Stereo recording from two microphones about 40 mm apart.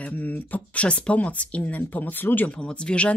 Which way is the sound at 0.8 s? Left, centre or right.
Left.